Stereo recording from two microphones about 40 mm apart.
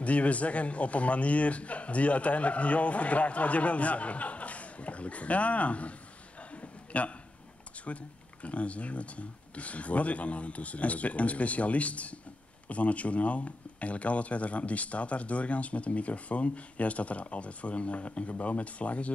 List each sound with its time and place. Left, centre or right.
0.0 s speech: left
6.5 s a sound: left
7.8 s speech: left